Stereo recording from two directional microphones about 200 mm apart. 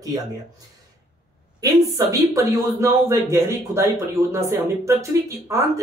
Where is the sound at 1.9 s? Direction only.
15° right (ahead or behind).